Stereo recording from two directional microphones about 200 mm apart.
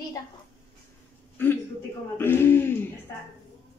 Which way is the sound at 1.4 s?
10° left (ahead or behind).